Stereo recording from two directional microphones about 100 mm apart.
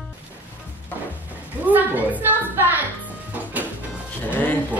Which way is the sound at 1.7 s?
15° right (ahead or behind).